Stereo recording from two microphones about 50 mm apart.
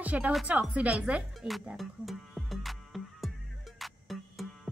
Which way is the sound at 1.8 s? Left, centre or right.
Centre.